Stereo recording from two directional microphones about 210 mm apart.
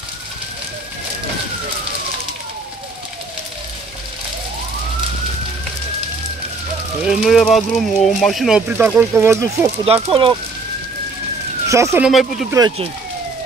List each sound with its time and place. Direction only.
7.0 s speech: 5° right (ahead or behind)
10.0 s speech: 25° right (ahead or behind)
11.7 s speech: 15° right (ahead or behind)
12.1 s speech: centre (ahead or behind)
12.4 s speech: 15° right (ahead or behind)